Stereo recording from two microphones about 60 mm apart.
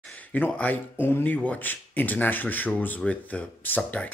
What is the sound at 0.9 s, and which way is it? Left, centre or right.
Speech, left.